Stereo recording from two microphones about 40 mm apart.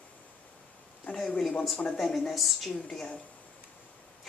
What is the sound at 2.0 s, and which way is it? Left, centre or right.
Speech, centre.